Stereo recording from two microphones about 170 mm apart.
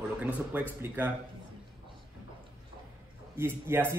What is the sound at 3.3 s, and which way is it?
Speech, 15° right (ahead or behind).